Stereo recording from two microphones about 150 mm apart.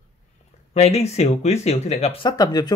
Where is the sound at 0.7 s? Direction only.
45° left (ahead or behind).